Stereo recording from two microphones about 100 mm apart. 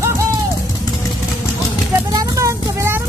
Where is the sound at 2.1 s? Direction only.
35° right (ahead or behind).